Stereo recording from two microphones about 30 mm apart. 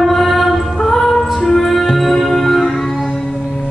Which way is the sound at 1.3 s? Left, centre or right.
Centre.